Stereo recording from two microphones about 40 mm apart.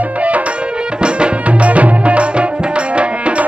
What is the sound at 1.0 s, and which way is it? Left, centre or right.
Music, right.